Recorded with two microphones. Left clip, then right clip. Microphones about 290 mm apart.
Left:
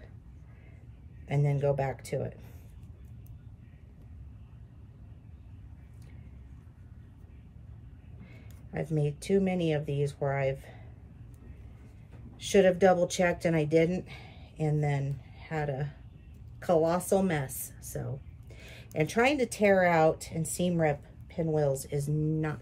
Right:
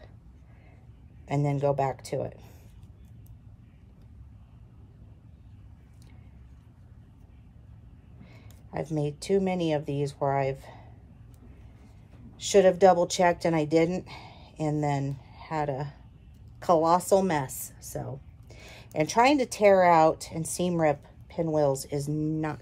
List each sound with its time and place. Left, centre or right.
1.2 s speech: centre
8.7 s speech: centre
12.4 s a woman's voice: centre